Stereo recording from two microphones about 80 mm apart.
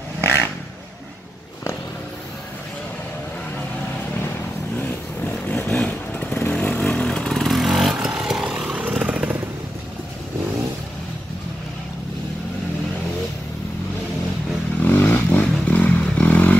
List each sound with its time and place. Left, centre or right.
0.2 s vehicle: left
4.7 s vehicle: left
5.7 s motorcycle: centre
14.8 s vehicle: left